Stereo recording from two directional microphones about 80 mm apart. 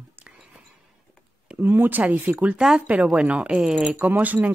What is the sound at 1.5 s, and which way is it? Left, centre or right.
Speech, right.